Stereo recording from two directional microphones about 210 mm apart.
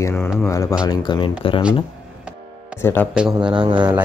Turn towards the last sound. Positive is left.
turn(degrees=-25)  # may be behind; listen again after turning